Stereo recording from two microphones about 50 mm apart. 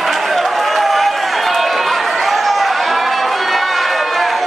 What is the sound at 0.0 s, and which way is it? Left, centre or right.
Run, centre.